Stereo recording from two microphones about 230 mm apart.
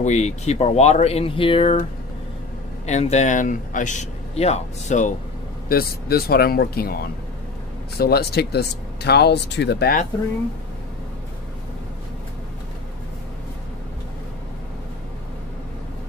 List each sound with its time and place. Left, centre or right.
0.0 s speech: left
2.9 s speech: left